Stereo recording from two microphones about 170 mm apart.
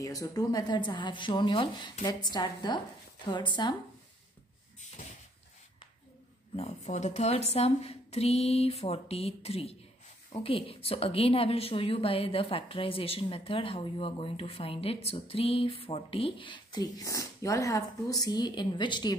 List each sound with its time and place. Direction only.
0.0 s speech: 20° left (ahead or behind)
6.5 s a woman's voice: 40° left (ahead or behind)